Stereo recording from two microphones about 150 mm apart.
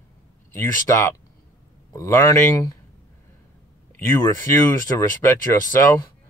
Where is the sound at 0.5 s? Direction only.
20° left (ahead or behind).